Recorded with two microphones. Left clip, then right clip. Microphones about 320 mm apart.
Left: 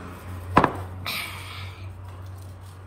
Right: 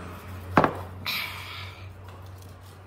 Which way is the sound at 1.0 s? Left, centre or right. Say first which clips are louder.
Right 1 dB; centre.